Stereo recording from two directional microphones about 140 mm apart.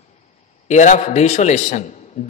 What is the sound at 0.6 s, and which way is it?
Speech, 55° left (ahead or behind).